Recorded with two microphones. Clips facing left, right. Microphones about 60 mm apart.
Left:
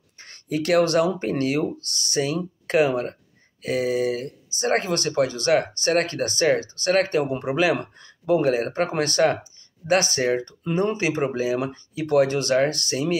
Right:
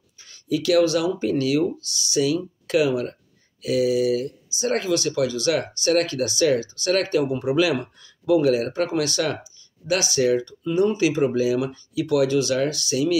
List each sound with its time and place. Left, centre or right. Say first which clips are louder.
0.2 s speech: right 1 dB; left